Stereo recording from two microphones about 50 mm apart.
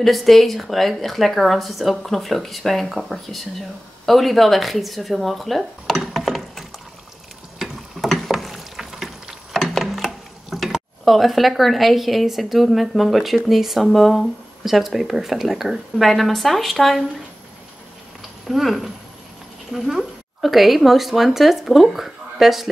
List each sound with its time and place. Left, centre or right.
0.0 s speech: centre
7.5 s a sound: centre
18.5 s speech: centre